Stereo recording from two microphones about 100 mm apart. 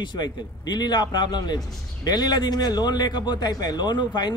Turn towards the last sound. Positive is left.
turn(degrees=45)  # may be behind; listen again after turning